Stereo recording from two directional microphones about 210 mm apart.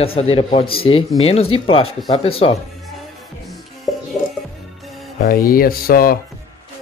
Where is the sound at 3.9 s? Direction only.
Centre (ahead or behind).